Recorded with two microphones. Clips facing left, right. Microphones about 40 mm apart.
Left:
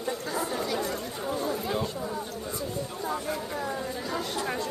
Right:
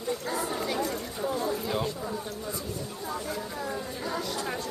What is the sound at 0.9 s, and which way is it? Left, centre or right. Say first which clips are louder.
Chatter: right 1 dB; centre.